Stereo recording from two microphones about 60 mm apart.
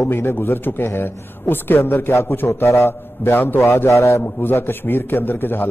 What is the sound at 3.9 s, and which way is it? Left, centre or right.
Speech, left.